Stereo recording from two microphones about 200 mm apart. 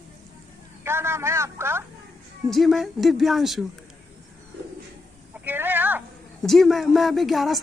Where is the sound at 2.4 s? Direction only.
Centre (ahead or behind).